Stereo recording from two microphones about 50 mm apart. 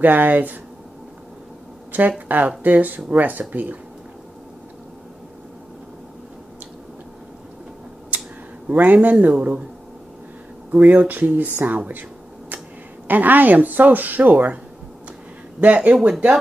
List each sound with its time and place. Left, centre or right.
0.0 s a woman's voice: right
1.9 s a woman's voice: right
8.6 s a woman's voice: right
9.3 s speech: right
10.7 s a woman's voice: right
13.1 s a woman's voice: right
15.6 s speech: right